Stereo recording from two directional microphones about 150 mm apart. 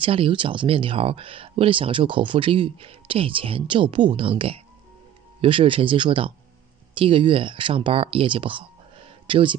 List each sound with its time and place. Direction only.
0.0 s speech: 35° right (ahead or behind)